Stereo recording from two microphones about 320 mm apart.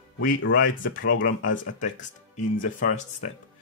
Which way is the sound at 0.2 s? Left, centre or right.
Left.